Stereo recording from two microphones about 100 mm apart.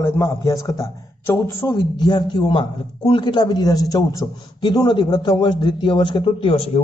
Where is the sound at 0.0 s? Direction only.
30° left (ahead or behind).